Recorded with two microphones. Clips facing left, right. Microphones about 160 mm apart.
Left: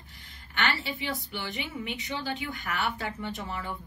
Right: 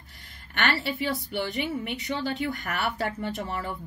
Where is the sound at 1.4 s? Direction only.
45° right (ahead or behind).